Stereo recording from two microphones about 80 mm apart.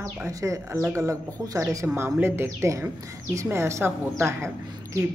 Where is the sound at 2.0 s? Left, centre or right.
Right.